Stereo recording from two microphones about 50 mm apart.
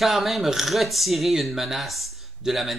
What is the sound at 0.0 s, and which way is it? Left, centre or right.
Speech, centre.